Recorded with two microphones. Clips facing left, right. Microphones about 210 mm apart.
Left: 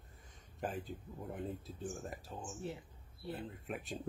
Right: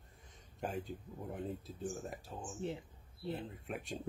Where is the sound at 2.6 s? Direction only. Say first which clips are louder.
Right 4 dB; 20° right (ahead or behind).